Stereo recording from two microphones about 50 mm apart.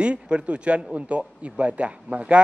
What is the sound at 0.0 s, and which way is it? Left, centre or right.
A man's voice, right.